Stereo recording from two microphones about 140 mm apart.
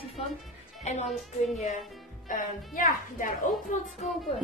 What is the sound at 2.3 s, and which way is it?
Speech, 65° left (ahead or behind).